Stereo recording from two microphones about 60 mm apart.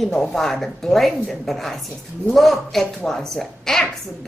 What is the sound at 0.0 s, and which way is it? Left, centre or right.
A woman's voice, centre.